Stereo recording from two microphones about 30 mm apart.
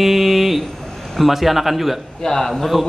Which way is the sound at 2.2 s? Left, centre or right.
Centre.